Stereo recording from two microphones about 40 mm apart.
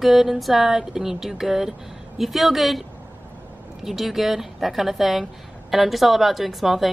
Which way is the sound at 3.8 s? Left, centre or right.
Centre.